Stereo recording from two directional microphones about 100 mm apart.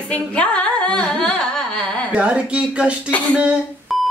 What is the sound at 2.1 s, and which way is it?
Speech, 10° right (ahead or behind).